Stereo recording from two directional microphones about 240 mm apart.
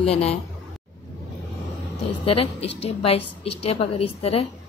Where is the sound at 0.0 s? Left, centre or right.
Left.